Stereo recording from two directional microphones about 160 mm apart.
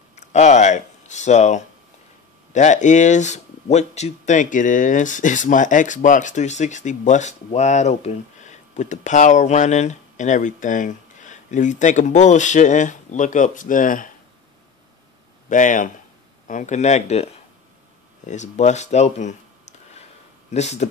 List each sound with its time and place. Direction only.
0.1 s speech: 45° left (ahead or behind)
15.5 s speech: 55° left (ahead or behind)
20.5 s speech: 45° left (ahead or behind)